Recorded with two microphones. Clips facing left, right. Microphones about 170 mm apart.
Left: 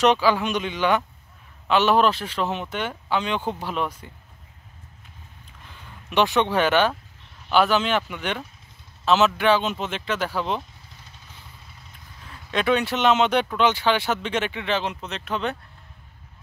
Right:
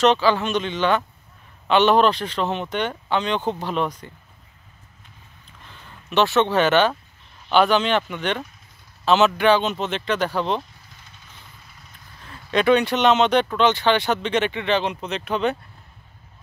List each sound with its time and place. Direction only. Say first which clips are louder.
0.0 s speech: right 1 dB; 10° left (ahead or behind)
5.7 s speech: right 3 dB; 10° left (ahead or behind)
12.3 s speech: right 5 dB; centre (ahead or behind)